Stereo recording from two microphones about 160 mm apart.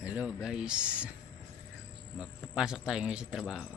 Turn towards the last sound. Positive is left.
turn(degrees=0)  # may be behind; listen again after turning